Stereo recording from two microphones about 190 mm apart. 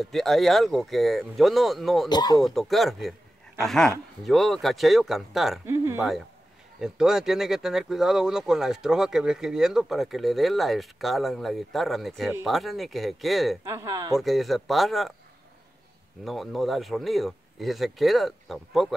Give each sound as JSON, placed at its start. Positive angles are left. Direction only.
{"t": 0.0, "sound": "speech", "side_deg": 0}
{"t": 2.0, "sound": "speech", "side_deg": 20}
{"t": 2.4, "sound": "speech", "side_deg": 0}
{"t": 5.7, "sound": "speech", "side_deg": -15}
{"t": 6.8, "sound": "speech", "side_deg": -5}
{"t": 13.7, "sound": "speech", "side_deg": -15}
{"t": 14.1, "sound": "speech", "side_deg": 0}
{"t": 16.3, "sound": "speech", "side_deg": 0}